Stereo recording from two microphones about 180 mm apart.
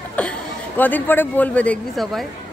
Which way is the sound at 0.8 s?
10° left (ahead or behind).